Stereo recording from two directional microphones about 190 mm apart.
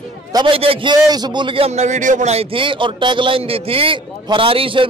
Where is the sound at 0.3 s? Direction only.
25° right (ahead or behind).